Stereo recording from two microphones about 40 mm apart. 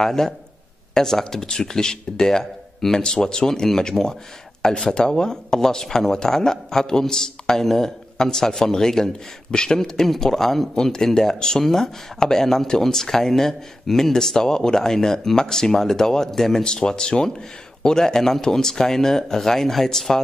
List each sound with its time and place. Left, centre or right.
0.0 s speech: centre
16.6 s speech: centre